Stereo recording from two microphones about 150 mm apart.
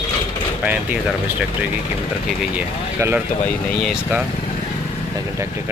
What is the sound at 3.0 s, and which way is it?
Speech, 15° right (ahead or behind).